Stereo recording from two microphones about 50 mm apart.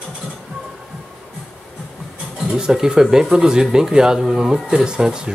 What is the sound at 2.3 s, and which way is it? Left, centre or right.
Speech, centre.